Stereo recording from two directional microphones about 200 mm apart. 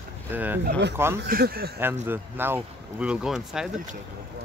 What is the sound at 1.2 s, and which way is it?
Speech, 50° right (ahead or behind).